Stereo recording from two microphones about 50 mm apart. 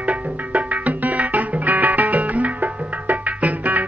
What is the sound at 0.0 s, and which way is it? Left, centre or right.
Music, right.